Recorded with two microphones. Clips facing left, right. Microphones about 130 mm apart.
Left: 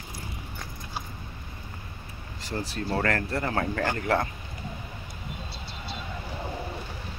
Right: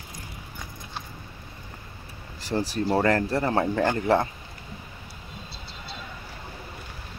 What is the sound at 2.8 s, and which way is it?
Speech, 20° right (ahead or behind).